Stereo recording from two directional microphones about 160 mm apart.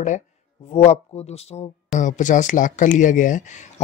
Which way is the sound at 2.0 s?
50° left (ahead or behind).